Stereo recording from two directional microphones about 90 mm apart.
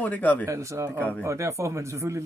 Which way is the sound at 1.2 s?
35° right (ahead or behind).